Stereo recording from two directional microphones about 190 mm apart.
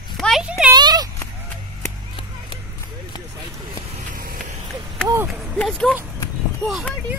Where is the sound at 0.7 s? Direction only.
20° right (ahead or behind).